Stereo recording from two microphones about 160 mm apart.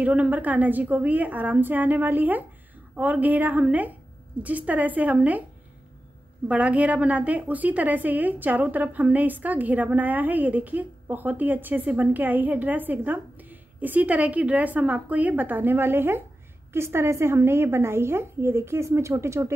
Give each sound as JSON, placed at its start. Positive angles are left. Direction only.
{"t": 0.0, "sound": "a woman's voice", "side_deg": -10}
{"t": 6.4, "sound": "a woman's voice", "side_deg": -10}